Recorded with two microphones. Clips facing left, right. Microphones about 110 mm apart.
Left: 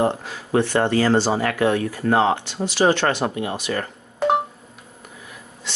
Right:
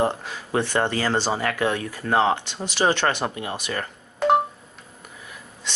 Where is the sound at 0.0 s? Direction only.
15° left (ahead or behind).